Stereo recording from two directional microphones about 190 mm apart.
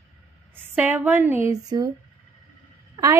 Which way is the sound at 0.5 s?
10° right (ahead or behind).